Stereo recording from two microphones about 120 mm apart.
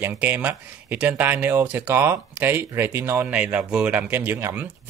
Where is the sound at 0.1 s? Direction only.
15° right (ahead or behind).